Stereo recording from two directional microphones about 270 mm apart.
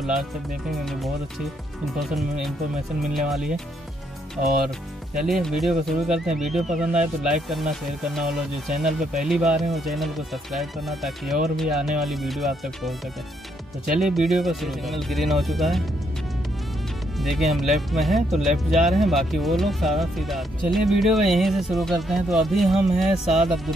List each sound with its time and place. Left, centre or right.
0.0 s speech: centre
4.6 s speech: centre
13.9 s speech: centre
17.2 s speech: centre